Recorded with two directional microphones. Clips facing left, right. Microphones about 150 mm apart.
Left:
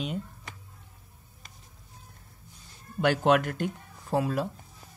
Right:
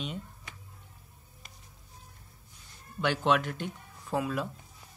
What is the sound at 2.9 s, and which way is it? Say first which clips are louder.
Speech: left 4 dB; 45° left (ahead or behind).